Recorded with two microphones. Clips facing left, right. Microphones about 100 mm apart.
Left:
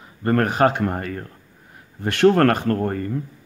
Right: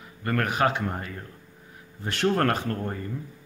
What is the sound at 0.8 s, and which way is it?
Speech, 60° left (ahead or behind).